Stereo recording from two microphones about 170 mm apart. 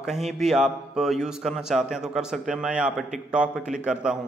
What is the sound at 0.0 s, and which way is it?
A man's voice, centre (ahead or behind).